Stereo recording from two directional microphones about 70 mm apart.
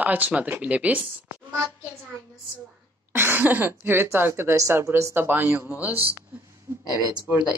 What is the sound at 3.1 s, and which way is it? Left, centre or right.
Speech, right.